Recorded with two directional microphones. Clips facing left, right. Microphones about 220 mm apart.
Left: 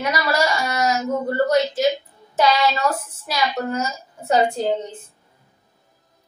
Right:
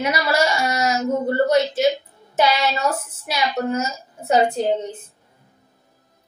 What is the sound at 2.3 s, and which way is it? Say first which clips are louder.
A woman's voice: left 1 dB; 25° right (ahead or behind).